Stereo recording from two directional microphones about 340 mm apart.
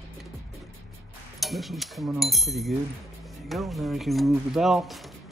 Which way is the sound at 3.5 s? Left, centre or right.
Centre.